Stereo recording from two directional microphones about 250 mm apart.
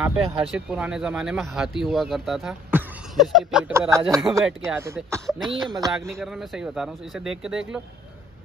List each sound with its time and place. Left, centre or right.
0.0 s a man's voice: centre
6.2 s speech: centre